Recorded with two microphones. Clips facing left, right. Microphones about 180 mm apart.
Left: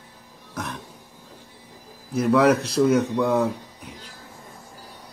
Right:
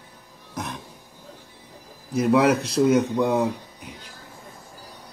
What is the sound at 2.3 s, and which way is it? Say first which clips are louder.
Speech: left 1 dB; 60° left (ahead or behind).